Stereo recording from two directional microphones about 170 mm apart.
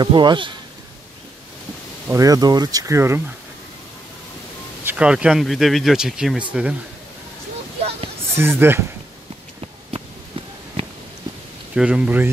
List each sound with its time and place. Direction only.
0.0 s speech: 25° right (ahead or behind)
2.0 s speech: 20° right (ahead or behind)
4.8 s speech: 5° right (ahead or behind)
8.4 s speech: 15° right (ahead or behind)
11.7 s speech: 5° right (ahead or behind)